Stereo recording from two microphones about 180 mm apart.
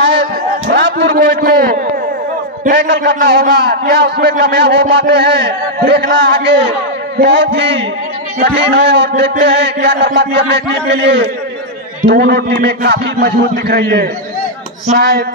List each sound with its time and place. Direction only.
0.7 s a man's voice: 70° right (ahead or behind)
2.7 s speech: 75° right (ahead or behind)
8.4 s speech: 65° right (ahead or behind)